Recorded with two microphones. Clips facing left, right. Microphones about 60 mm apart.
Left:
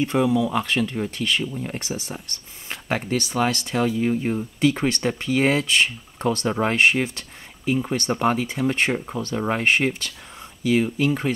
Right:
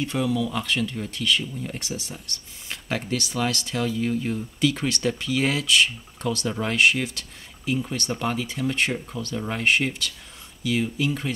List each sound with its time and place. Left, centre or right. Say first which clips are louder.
0.0 s speech: left 5 dB; left